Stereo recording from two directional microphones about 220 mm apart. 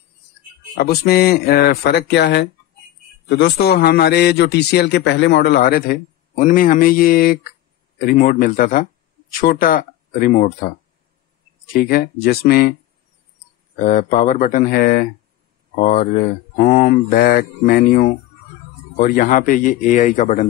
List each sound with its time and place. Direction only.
0.7 s a man's voice: 45° left (ahead or behind)
13.8 s speech: 35° left (ahead or behind)